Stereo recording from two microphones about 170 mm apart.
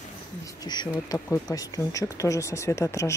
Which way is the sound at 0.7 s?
20° left (ahead or behind).